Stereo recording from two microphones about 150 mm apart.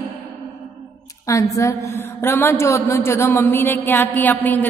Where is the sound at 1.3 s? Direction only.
20° left (ahead or behind).